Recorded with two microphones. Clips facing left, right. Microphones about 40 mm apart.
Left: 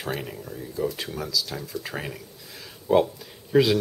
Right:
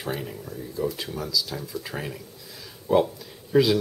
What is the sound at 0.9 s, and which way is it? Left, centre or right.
Speech, centre.